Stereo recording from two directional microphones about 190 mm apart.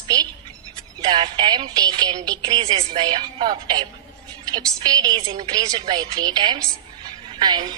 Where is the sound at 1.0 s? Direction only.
25° right (ahead or behind).